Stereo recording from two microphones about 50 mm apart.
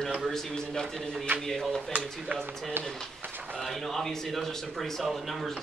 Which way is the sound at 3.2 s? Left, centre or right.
Right.